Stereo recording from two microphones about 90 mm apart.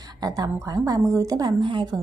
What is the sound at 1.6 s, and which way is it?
Speech, 60° right (ahead or behind).